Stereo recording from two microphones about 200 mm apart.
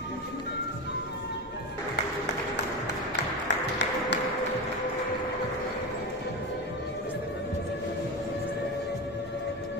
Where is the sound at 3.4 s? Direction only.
60° left (ahead or behind).